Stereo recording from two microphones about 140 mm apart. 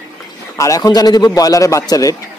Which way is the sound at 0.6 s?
25° left (ahead or behind).